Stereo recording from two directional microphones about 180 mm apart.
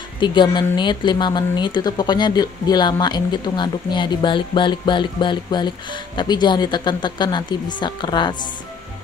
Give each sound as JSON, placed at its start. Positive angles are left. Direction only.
{"t": 0.2, "sound": "speech", "side_deg": 25}